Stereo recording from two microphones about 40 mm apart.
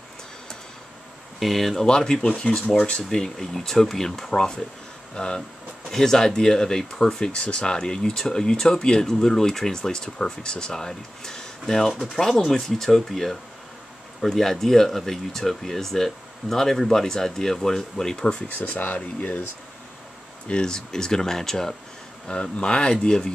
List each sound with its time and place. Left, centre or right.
1.4 s speech: centre
1.9 s speech: centre
18.6 s speech: left
18.9 s speech: left
20.4 s speech: left
22.3 s speech: left